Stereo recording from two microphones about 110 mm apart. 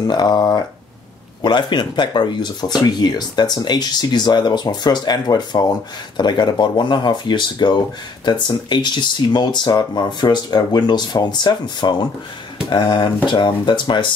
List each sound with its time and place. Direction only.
0.0 s speech: 40° left (ahead or behind)